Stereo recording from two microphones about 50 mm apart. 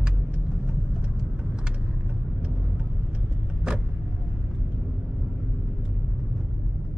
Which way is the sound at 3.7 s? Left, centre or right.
Right.